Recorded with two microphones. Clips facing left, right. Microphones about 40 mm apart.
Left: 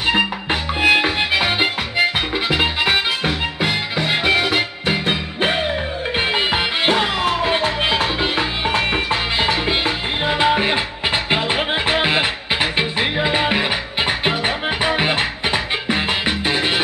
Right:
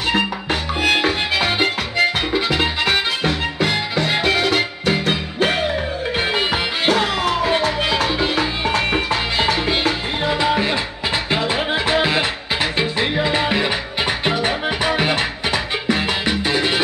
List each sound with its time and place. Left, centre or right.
0.0 s music: centre
10.2 s music: left